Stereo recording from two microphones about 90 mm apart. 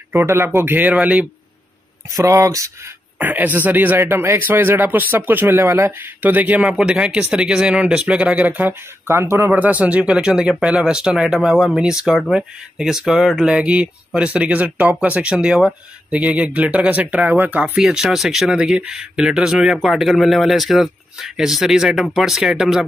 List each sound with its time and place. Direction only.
0.1 s speech: 25° right (ahead or behind)
2.0 s speech: 35° right (ahead or behind)
3.2 s speech: 20° right (ahead or behind)
9.5 s speech: 15° right (ahead or behind)
17.8 s speech: 5° right (ahead or behind)